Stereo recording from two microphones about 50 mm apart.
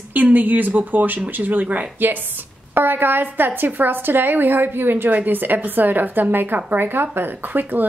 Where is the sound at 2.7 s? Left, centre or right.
Right.